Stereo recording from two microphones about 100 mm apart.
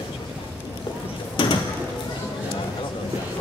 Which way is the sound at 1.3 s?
55° left (ahead or behind).